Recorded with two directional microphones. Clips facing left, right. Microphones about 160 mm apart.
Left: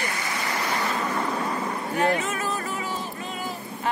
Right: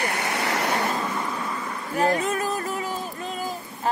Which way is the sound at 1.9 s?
35° right (ahead or behind).